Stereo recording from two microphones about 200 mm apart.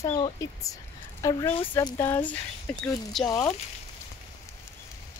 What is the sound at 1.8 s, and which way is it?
Speech, 15° left (ahead or behind).